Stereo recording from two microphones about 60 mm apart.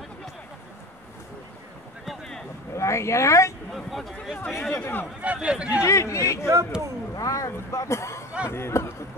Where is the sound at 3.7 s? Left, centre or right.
Centre.